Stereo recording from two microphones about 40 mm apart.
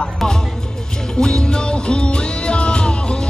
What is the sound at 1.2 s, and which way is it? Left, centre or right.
Music, left.